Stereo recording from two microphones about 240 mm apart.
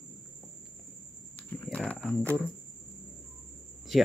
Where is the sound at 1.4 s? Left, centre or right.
Centre.